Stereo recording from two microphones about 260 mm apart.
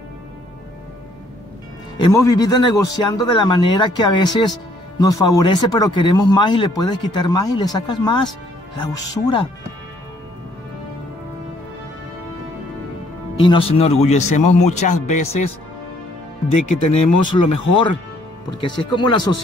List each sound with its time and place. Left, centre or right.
2.0 s speech: centre
13.4 s speech: centre
16.7 s speech: left
18.6 s speech: centre